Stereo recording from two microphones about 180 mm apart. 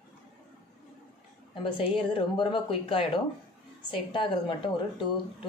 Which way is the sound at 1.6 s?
30° left (ahead or behind).